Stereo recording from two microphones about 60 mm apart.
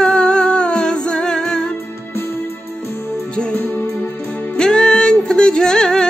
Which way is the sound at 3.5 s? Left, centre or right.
Left.